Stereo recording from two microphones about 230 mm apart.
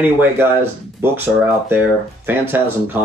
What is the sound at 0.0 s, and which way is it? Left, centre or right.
Speech, centre.